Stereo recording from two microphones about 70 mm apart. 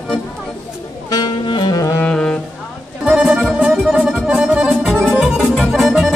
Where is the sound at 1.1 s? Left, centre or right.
Left.